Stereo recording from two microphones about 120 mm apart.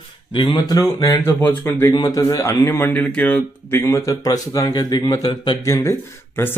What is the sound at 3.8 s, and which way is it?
Speech, 25° left (ahead or behind).